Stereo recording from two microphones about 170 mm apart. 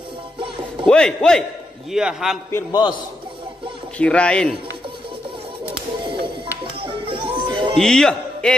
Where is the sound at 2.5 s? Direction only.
25° left (ahead or behind).